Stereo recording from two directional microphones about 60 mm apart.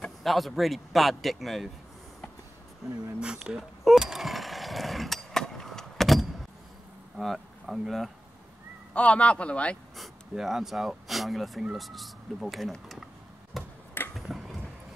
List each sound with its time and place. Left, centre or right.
0.2 s a man's voice: centre
3.2 s speech: centre
3.8 s skateboard: centre
7.2 s speech: centre
8.9 s a man's voice: left
9.9 s a man's voice: centre
12.8 s a sound: centre